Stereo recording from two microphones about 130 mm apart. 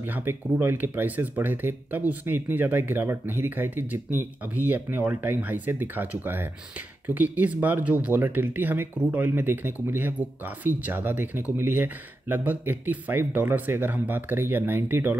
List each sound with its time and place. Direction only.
0.0 s speech: 15° right (ahead or behind)